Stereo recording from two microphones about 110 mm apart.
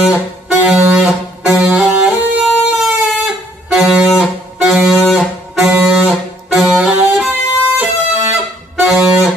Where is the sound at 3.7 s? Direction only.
5° right (ahead or behind).